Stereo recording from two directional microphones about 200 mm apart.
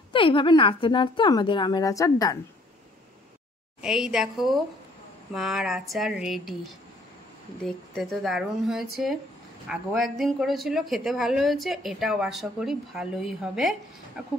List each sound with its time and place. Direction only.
0.1 s speech: 25° left (ahead or behind)
3.8 s a woman's voice: 5° right (ahead or behind)